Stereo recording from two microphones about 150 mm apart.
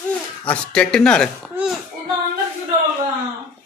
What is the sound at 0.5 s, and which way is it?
Speech, 5° left (ahead or behind).